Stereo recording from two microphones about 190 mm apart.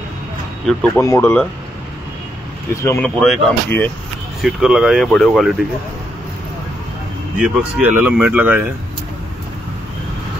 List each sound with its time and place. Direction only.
0.7 s speech: 5° left (ahead or behind)
2.7 s speech: 15° left (ahead or behind)
7.3 s speech: 5° right (ahead or behind)